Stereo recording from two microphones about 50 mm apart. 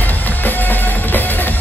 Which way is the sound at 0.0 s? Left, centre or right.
Left.